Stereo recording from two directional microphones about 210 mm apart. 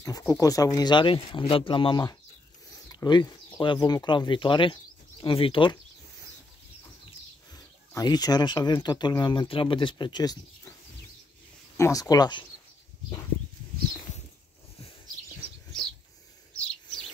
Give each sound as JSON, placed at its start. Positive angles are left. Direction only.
{"t": 0.0, "sound": "speech", "side_deg": 15}
{"t": 7.9, "sound": "speech", "side_deg": 20}
{"t": 11.7, "sound": "speech", "side_deg": 15}